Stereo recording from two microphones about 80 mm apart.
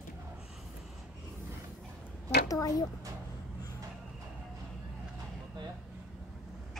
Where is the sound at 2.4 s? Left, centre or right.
Left.